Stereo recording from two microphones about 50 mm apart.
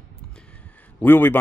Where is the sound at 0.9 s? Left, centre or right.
Left.